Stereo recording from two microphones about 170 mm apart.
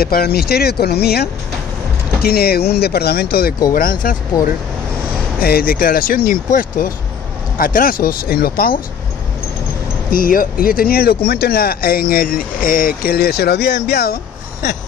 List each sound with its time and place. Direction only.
0.0 s speech: 60° left (ahead or behind)
10.1 s speech: 55° left (ahead or behind); by 14.1 s 70° left (ahead or behind)